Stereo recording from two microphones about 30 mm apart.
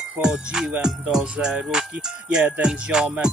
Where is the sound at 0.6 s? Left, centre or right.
Centre.